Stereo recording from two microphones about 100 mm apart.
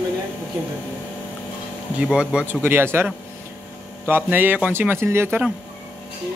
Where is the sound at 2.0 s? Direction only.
10° right (ahead or behind).